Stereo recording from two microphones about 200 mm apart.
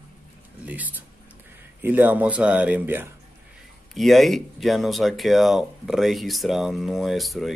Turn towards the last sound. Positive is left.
turn(degrees=0)  # may be behind; listen again after turning